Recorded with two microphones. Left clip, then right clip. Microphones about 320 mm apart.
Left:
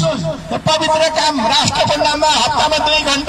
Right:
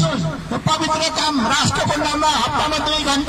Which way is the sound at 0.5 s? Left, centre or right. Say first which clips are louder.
Left 5 dB; centre.